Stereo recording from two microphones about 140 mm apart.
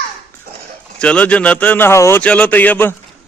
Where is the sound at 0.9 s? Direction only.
10° left (ahead or behind).